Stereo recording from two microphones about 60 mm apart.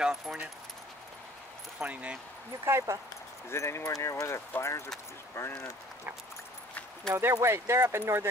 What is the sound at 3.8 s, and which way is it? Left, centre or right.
Speech, left.